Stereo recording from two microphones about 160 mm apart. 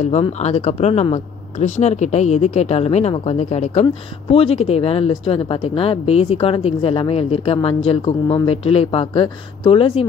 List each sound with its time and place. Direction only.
0.2 s speech: 45° left (ahead or behind)